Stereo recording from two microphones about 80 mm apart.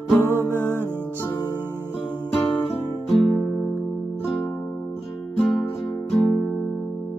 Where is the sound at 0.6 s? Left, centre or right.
Left.